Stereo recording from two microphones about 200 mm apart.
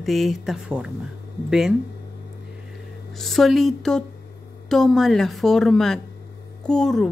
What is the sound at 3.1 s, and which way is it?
Speech, centre (ahead or behind).